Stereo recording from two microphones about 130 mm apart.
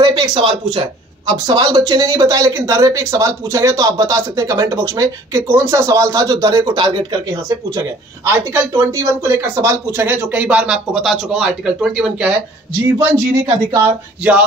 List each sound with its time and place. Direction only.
0.0 s speech: 40° right (ahead or behind)
8.3 s speech: 20° right (ahead or behind)
12.9 s speech: 25° right (ahead or behind)